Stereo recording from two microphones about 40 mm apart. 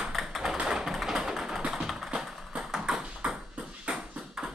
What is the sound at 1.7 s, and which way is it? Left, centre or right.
Music, centre.